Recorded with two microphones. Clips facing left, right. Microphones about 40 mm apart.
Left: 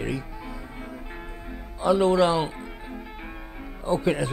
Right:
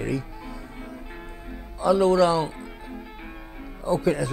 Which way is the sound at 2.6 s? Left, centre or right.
Centre.